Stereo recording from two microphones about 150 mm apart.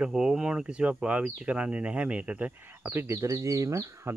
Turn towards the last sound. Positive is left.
turn(degrees=-20)  # may be behind; listen again after turning